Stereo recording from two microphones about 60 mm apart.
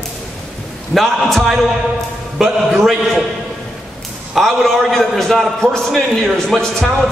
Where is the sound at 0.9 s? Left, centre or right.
Centre.